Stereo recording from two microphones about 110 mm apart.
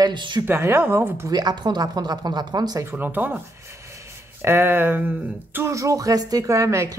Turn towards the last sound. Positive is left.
turn(degrees=-30)  # may be behind; listen again after turning